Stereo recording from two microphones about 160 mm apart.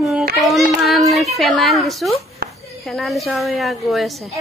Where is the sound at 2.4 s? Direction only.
70° right (ahead or behind).